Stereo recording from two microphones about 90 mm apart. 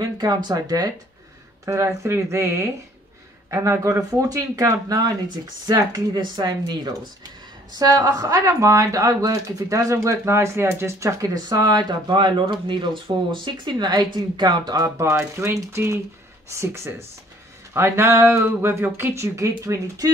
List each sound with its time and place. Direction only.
0.2 s speech: 50° right (ahead or behind)
1.7 s speech: 35° right (ahead or behind)
15.0 s speech: 30° right (ahead or behind)